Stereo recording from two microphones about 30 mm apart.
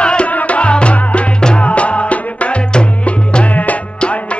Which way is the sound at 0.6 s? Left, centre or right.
Left.